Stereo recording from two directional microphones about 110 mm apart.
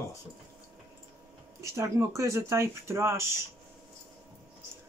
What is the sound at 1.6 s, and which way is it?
Speech, 25° right (ahead or behind).